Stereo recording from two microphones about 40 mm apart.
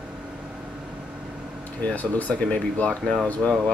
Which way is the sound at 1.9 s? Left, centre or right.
Left.